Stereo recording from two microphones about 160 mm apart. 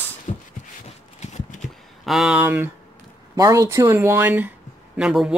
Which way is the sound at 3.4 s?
20° right (ahead or behind).